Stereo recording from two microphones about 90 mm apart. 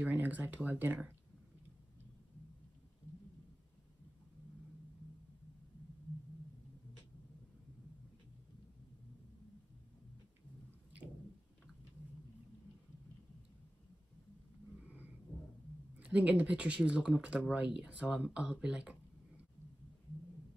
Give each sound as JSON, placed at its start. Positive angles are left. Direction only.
{"t": 0.0, "sound": "speech", "side_deg": -15}
{"t": 16.0, "sound": "speech", "side_deg": -15}